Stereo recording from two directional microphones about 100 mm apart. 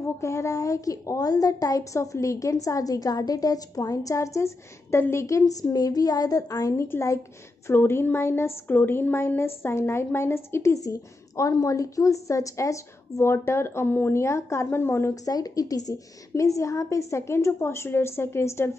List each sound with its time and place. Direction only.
0.0 s a woman's voice: 30° left (ahead or behind)
15.3 s a woman's voice: 40° left (ahead or behind)